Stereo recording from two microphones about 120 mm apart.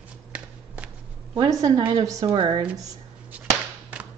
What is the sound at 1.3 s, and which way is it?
A woman's voice, 35° right (ahead or behind).